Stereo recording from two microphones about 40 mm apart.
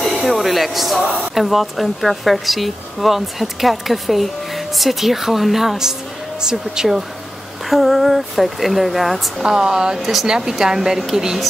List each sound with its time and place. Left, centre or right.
0.0 s a sound: centre
0.3 s speech: centre
7.7 s speech: centre
9.4 s speech: centre
9.9 s speech: centre